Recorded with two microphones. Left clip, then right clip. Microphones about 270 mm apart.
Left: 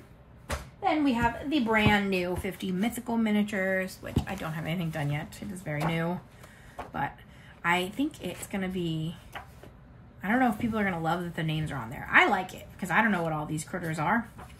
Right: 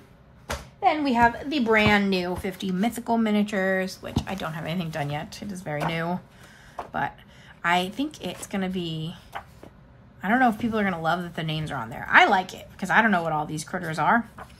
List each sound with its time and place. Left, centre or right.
1.0 s a woman's voice: centre
7.6 s a woman's voice: centre